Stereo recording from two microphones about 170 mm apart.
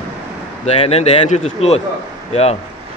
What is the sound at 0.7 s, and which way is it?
Speech, 35° left (ahead or behind).